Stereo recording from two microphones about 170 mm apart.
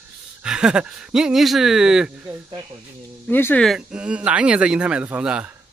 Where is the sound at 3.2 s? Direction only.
10° left (ahead or behind).